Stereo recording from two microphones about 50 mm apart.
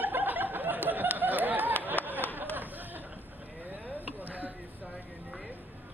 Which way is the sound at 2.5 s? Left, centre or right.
Right.